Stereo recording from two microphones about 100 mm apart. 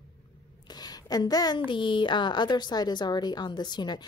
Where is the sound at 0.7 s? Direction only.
40° left (ahead or behind).